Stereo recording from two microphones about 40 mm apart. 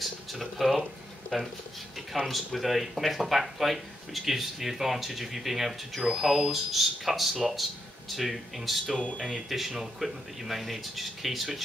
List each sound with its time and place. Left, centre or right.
0.0 s speech: centre